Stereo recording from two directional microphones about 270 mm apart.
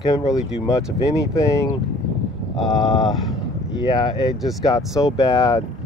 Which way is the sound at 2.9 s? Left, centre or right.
Centre.